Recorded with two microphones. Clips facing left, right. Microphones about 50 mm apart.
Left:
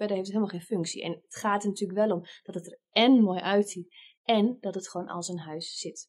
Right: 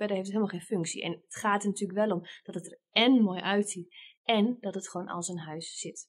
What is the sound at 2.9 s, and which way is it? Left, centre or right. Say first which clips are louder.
A woman's voice: left 3 dB; centre.